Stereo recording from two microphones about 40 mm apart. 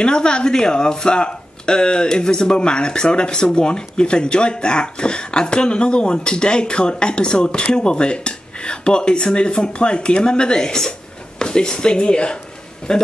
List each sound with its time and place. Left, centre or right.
0.0 s speech: left